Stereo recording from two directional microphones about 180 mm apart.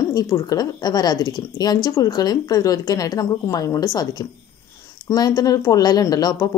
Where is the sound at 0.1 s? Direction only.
20° left (ahead or behind).